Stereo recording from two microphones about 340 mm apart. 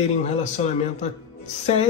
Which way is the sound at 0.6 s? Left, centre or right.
Centre.